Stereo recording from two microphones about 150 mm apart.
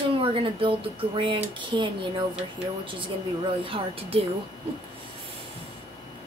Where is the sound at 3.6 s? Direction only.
40° right (ahead or behind).